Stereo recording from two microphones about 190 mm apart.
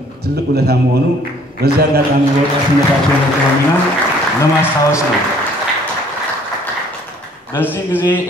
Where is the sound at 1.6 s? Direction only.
55° right (ahead or behind).